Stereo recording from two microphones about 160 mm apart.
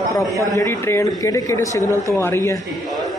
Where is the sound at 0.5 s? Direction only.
15° left (ahead or behind).